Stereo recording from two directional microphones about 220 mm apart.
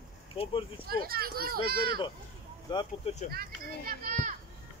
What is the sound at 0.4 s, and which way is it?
Speech, 25° left (ahead or behind).